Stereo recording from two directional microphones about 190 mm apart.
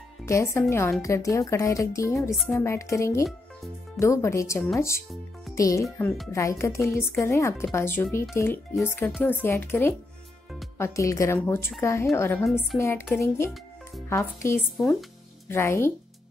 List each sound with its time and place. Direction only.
0.2 s speech: 15° left (ahead or behind)
14.8 s speech: centre (ahead or behind)
15.4 s speech: 10° left (ahead or behind)